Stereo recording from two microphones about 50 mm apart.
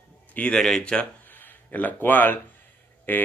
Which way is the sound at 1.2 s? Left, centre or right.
Left.